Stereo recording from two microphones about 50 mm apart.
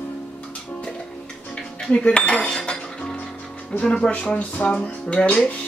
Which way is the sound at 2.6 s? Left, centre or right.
Centre.